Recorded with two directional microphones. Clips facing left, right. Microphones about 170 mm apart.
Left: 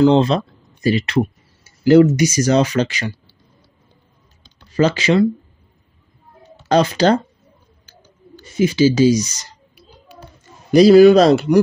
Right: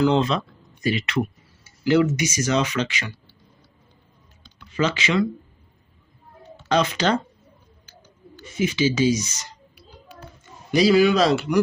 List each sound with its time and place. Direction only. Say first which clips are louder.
0.0 s speech: left 7 dB; 30° left (ahead or behind)
4.6 s speech: left 7 dB; 40° left (ahead or behind)
6.7 s speech: left 7 dB; 35° left (ahead or behind)
8.5 s speech: left 7 dB; 35° left (ahead or behind)
10.7 s speech: left 9 dB; 40° left (ahead or behind)